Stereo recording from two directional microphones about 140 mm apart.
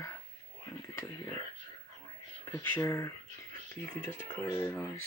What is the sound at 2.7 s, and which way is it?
Speech, 20° left (ahead or behind).